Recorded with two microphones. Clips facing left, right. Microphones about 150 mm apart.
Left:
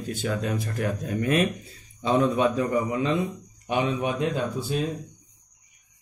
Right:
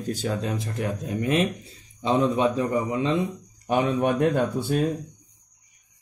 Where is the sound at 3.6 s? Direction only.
45° right (ahead or behind).